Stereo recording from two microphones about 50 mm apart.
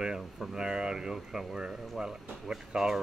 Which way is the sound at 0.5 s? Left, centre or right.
Centre.